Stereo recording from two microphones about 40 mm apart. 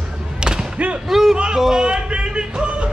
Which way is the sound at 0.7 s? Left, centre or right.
Right.